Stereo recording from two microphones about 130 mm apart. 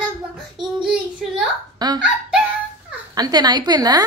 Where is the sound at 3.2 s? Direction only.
30° right (ahead or behind).